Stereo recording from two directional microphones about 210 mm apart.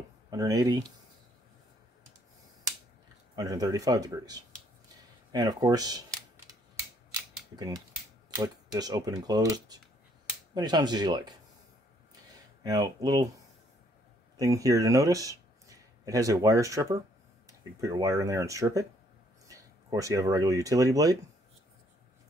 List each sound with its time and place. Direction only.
0.3 s speech: 15° right (ahead or behind)
3.3 s speech: 15° right (ahead or behind)
7.5 s speech: 15° right (ahead or behind)
12.6 s speech: 20° right (ahead or behind)
14.3 s speech: 15° right (ahead or behind)